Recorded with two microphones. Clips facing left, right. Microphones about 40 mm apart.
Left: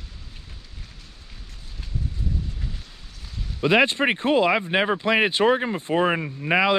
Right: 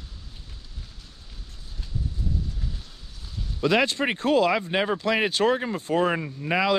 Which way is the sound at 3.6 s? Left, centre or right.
Left.